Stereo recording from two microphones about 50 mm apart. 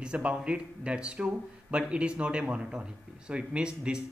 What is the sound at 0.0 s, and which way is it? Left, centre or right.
Speech, right.